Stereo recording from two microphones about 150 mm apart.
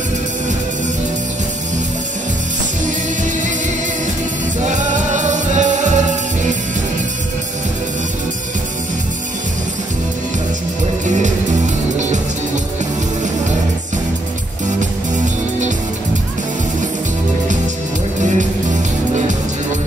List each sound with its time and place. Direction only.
4.6 s music: 55° right (ahead or behind)
11.1 s music: 55° right (ahead or behind)
14.8 s music: 55° right (ahead or behind)
18.2 s music: 55° right (ahead or behind)